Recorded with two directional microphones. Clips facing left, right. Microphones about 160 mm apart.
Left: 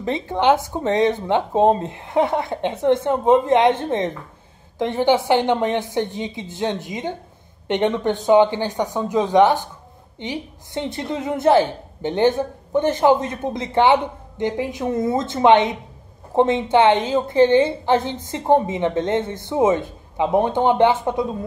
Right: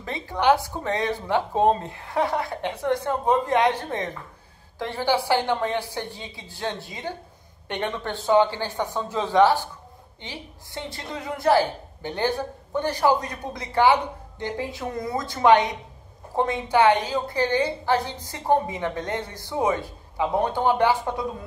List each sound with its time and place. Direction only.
0.0 s a woman's voice: 20° left (ahead or behind)